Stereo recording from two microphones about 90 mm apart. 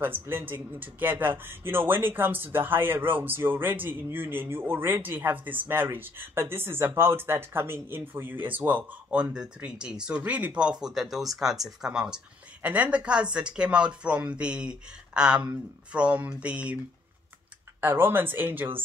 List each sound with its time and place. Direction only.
0.0 s a man's voice: 25° right (ahead or behind)
17.7 s a man's voice: 25° right (ahead or behind)